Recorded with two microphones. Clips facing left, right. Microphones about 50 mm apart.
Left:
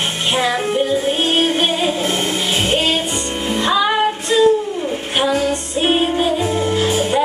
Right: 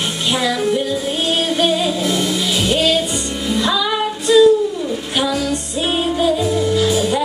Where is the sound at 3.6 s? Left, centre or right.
Left.